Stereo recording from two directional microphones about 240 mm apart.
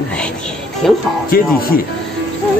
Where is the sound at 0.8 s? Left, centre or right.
Centre.